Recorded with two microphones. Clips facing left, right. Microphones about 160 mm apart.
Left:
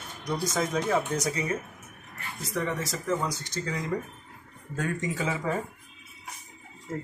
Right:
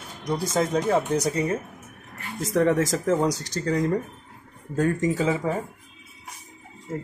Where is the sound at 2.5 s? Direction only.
45° right (ahead or behind).